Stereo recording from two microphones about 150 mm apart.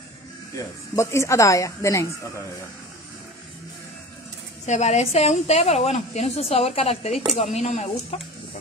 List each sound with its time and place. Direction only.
0.6 s speech: 20° left (ahead or behind)
4.6 s a woman's voice: 50° left (ahead or behind)